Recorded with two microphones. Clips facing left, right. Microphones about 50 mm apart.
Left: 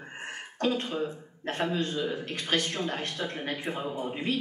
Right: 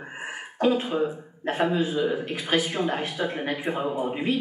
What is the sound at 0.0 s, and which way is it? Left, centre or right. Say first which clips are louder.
Speech: right 4 dB; centre.